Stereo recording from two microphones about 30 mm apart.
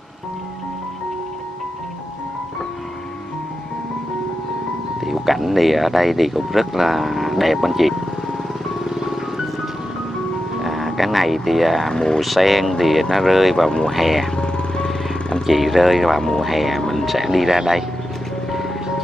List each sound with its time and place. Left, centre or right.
5.0 s speech: centre
8.8 s music: centre
10.6 s speech: centre
11.9 s speech: left
12.2 s speech: centre
13.7 s speech: left
13.9 s speech: centre
14.4 s vehicle: left
14.9 s vehicle: left
15.4 s speech: centre
16.2 s speech: centre
16.4 s speech: centre